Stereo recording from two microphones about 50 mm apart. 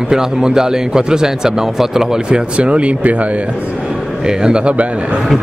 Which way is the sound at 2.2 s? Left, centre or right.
Right.